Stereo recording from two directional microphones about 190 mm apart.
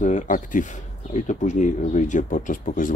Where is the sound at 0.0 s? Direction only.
40° left (ahead or behind).